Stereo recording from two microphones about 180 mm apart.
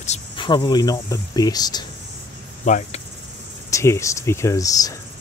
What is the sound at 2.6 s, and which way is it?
Speech, 45° left (ahead or behind).